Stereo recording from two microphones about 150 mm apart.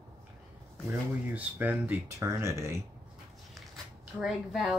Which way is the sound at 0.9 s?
15° right (ahead or behind).